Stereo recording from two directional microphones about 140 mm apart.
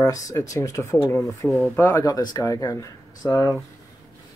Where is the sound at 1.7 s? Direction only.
20° left (ahead or behind).